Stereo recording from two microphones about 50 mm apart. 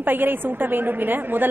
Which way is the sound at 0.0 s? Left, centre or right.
Right.